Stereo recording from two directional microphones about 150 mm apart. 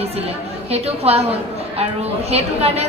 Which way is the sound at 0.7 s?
45° right (ahead or behind).